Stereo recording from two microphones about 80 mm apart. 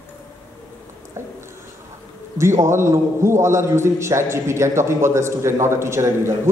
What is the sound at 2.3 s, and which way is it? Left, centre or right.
A man's voice, right.